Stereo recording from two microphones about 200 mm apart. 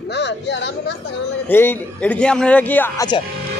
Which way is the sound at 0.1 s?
60° left (ahead or behind).